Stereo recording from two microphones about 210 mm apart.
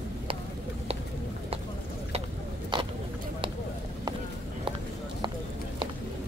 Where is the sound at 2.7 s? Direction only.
20° right (ahead or behind).